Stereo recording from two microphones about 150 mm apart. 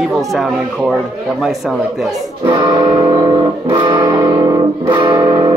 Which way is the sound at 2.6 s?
30° right (ahead or behind).